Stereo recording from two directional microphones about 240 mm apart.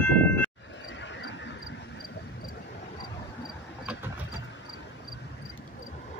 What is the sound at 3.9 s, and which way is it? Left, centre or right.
Vehicle, centre.